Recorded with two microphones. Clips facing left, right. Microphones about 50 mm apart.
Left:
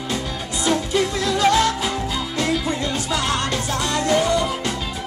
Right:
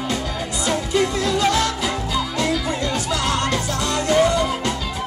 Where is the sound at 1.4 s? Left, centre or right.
Left.